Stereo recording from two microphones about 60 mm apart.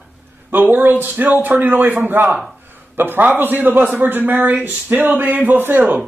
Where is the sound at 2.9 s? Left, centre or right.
Right.